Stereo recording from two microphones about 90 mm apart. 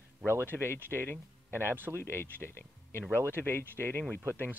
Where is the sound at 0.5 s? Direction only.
25° left (ahead or behind).